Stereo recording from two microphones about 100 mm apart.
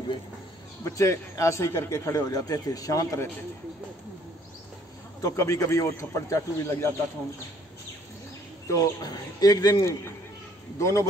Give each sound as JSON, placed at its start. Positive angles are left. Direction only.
{"t": 0.8, "sound": "a man's voice", "side_deg": 30}
{"t": 5.2, "sound": "a man's voice", "side_deg": 30}
{"t": 8.6, "sound": "a man's voice", "side_deg": 40}